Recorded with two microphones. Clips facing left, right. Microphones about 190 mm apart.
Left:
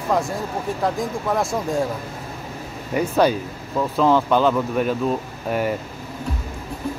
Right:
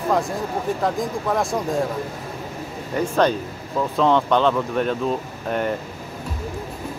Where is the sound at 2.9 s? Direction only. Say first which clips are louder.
Left 1 dB; 10° left (ahead or behind).